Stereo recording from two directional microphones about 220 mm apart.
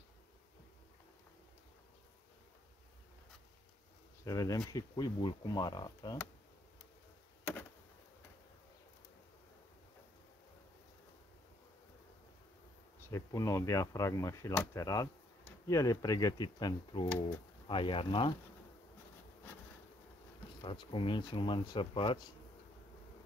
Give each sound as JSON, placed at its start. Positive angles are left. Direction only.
{"t": 4.2, "sound": "speech", "side_deg": 15}
{"t": 13.1, "sound": "speech", "side_deg": 15}
{"t": 20.6, "sound": "speech", "side_deg": 25}